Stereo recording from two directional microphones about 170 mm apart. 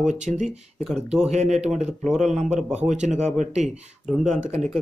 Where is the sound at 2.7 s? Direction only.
40° right (ahead or behind).